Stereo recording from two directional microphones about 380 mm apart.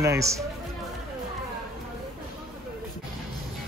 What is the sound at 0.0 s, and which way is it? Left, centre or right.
Speech, centre.